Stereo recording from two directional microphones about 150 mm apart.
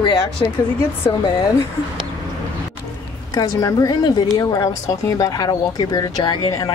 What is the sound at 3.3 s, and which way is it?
Speech, 25° left (ahead or behind).